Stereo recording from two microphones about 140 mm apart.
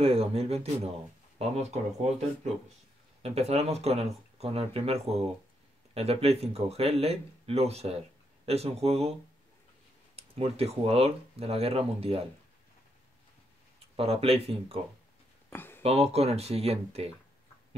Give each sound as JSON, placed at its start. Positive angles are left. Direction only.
{"t": 0.0, "sound": "speech", "side_deg": -45}
{"t": 10.1, "sound": "speech", "side_deg": -45}
{"t": 13.9, "sound": "speech", "side_deg": -45}
{"t": 15.5, "sound": "a sound", "side_deg": 15}
{"t": 15.8, "sound": "speech", "side_deg": -45}